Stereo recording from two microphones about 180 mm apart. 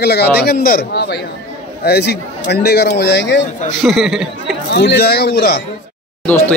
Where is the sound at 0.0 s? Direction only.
65° left (ahead or behind).